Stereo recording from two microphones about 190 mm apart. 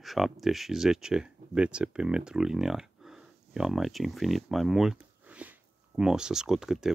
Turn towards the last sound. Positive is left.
turn(degrees=0)  # may be behind; listen again after turning